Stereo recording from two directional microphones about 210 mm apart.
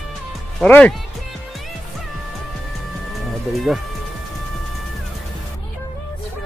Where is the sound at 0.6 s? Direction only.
5° left (ahead or behind).